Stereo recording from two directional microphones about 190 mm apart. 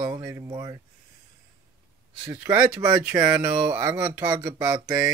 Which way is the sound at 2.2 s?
15° right (ahead or behind).